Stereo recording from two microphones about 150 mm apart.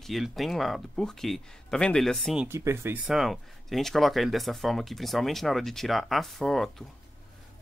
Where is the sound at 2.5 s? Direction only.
20° right (ahead or behind).